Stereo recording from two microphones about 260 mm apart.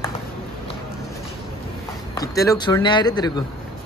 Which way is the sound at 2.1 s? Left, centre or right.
Centre.